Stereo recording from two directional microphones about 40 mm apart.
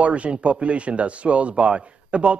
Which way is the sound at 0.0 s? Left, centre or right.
Right.